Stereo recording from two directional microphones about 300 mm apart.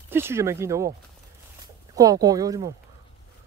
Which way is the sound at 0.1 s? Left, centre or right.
Centre.